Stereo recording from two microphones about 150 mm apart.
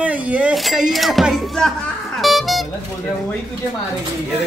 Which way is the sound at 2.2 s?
Centre (ahead or behind).